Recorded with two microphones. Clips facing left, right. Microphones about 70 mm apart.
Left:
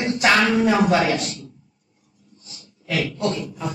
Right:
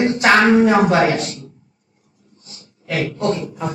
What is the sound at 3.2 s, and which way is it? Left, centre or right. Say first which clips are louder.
Speech: right 4 dB; right.